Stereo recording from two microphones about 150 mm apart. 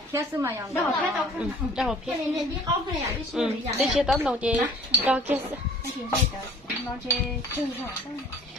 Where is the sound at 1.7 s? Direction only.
Centre (ahead or behind).